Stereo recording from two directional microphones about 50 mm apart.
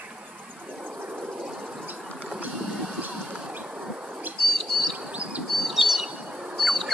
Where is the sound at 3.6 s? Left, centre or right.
Right.